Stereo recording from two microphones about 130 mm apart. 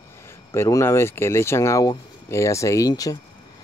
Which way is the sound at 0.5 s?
25° left (ahead or behind).